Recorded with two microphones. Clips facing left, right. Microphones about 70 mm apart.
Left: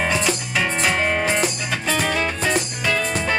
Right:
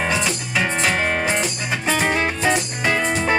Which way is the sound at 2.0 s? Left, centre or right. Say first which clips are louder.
Right 2 dB; right.